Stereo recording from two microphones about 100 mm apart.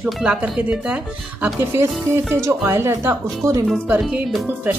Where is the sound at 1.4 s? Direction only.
20° right (ahead or behind).